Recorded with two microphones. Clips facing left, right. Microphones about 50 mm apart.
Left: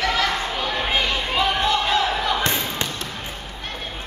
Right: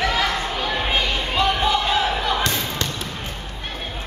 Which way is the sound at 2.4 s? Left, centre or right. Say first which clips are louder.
Even; left.